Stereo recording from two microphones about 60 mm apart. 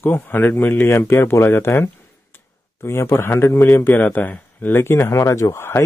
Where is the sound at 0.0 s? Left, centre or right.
Left.